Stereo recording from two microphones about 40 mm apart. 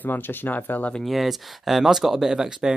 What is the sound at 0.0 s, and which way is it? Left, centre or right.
Speech, left.